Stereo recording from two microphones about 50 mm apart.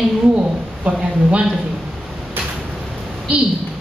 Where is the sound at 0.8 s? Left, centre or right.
Right.